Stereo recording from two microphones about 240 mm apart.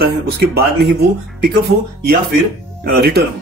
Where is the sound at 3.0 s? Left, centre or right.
Right.